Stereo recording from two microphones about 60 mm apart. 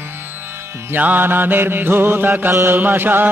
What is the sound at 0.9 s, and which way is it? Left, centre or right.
Mantra, right.